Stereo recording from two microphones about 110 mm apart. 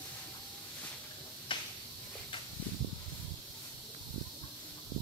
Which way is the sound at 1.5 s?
50° left (ahead or behind).